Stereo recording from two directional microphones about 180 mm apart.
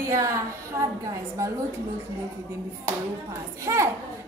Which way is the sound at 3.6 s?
15° right (ahead or behind).